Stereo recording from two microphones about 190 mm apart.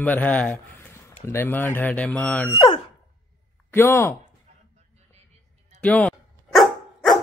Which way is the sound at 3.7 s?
10° left (ahead or behind).